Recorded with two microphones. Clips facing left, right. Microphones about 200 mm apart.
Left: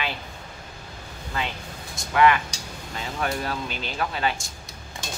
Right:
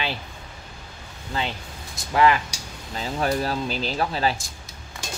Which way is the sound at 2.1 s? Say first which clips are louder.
Even; 30° right (ahead or behind).